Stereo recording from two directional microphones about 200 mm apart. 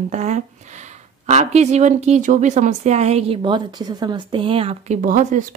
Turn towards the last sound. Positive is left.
turn(degrees=-40)  # may be behind; listen again after turning